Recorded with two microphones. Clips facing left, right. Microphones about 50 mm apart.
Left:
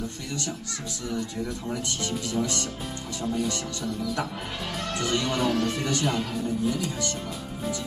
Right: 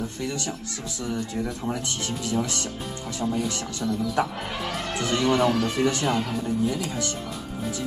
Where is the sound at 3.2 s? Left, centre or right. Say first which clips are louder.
Right 1 dB; centre.